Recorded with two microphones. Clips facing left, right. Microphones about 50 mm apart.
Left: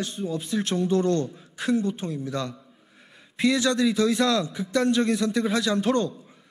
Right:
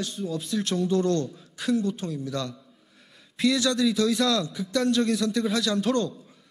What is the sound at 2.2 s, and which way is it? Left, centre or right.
Music, left.